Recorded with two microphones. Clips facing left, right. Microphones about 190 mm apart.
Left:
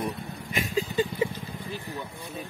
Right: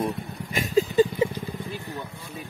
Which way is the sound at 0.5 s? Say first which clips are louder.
Right 7 dB; 40° right (ahead or behind).